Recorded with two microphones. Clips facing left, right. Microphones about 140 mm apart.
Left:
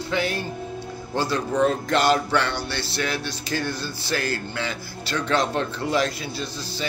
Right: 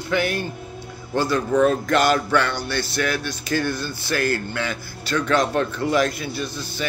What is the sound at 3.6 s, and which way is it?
Speech, 55° right (ahead or behind).